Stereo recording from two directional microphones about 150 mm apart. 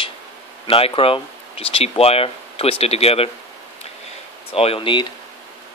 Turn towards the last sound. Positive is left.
turn(degrees=35)  # may be behind; listen again after turning